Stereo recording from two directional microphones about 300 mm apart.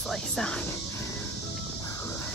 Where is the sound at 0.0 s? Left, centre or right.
Centre.